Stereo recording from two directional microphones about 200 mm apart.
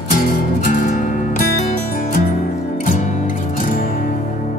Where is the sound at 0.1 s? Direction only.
40° left (ahead or behind).